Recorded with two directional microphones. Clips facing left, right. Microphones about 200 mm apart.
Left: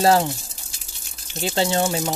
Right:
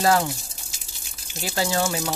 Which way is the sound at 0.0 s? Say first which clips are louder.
Left 3 dB; 30° left (ahead or behind).